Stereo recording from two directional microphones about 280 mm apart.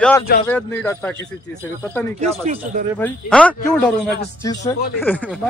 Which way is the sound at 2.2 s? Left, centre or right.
Right.